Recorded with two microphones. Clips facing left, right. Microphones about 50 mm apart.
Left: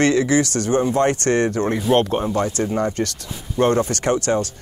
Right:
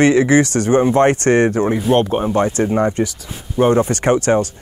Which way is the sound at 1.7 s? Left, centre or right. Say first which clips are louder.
Right 2 dB; centre.